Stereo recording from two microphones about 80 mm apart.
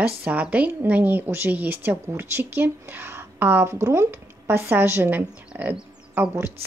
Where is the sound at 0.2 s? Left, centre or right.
Centre.